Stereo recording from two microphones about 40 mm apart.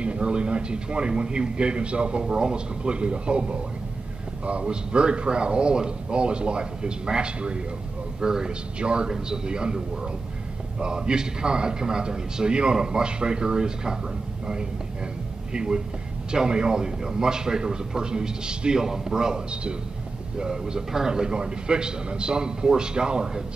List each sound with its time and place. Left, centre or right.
0.0 s a man's voice: right
8.7 s a man's voice: right
10.8 s a man's voice: right